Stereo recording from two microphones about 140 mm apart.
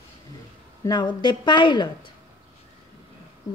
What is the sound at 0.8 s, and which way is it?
Speech, 30° left (ahead or behind).